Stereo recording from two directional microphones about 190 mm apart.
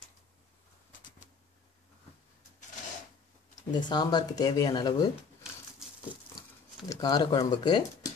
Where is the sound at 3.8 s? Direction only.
25° left (ahead or behind).